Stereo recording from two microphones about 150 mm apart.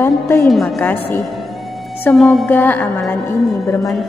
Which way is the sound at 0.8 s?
15° left (ahead or behind).